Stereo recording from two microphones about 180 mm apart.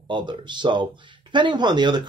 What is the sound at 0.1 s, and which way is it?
Speech, 25° right (ahead or behind).